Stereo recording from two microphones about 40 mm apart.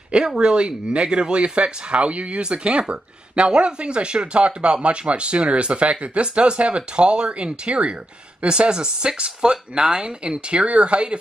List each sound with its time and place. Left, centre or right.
0.4 s speech: right